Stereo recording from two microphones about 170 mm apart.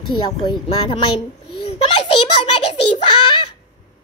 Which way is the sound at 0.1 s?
25° left (ahead or behind).